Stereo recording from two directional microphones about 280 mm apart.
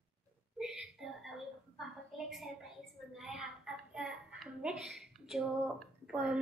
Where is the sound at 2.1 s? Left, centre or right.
Centre.